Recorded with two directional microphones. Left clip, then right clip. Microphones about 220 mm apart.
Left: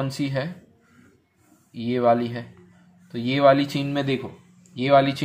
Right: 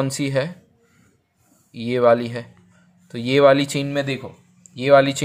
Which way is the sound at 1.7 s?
40° right (ahead or behind).